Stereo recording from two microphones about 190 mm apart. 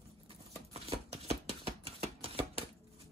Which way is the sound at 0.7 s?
35° right (ahead or behind).